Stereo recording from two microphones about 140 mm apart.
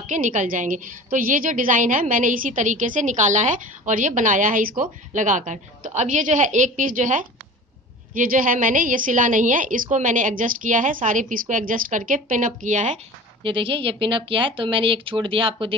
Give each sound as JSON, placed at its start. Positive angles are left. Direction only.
{"t": 0.0, "sound": "a woman's voice", "side_deg": -65}
{"t": 8.1, "sound": "a woman's voice", "side_deg": -80}
{"t": 13.4, "sound": "speech", "side_deg": -40}